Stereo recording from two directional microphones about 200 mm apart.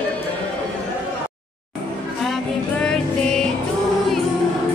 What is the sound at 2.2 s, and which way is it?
Music, centre (ahead or behind).